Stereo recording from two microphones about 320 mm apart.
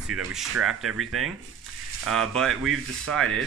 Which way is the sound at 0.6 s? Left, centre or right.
Centre.